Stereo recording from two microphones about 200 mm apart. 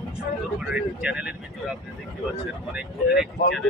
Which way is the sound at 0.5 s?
5° right (ahead or behind).